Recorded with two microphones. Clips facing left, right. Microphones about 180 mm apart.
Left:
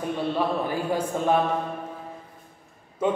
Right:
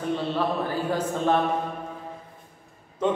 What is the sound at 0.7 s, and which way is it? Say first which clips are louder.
Speech: even; 10° left (ahead or behind).